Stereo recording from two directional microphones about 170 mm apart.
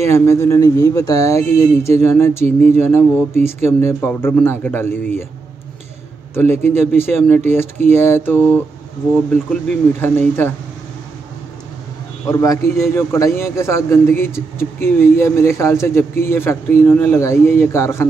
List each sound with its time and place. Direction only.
0.0 s a man's voice: 15° left (ahead or behind)
6.3 s a man's voice: 15° left (ahead or behind)
12.3 s a man's voice: 20° left (ahead or behind)